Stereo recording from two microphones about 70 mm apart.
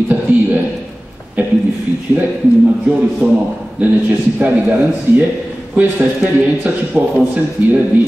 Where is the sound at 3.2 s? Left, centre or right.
Centre.